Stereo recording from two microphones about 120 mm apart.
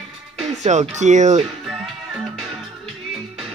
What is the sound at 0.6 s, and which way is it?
Speech, 75° right (ahead or behind).